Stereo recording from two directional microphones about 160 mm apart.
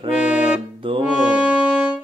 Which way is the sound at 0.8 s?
35° right (ahead or behind).